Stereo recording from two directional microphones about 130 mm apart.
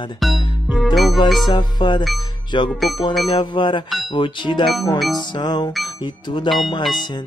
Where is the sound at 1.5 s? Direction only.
35° left (ahead or behind).